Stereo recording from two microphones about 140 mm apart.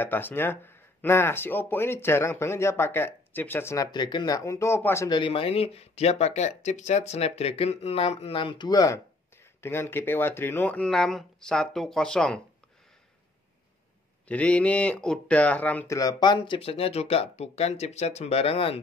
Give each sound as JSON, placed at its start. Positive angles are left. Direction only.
{"t": 0.0, "sound": "speech", "side_deg": 15}
{"t": 5.1, "sound": "speech", "side_deg": 40}
{"t": 14.2, "sound": "speech", "side_deg": 10}
{"t": 15.9, "sound": "speech", "side_deg": 25}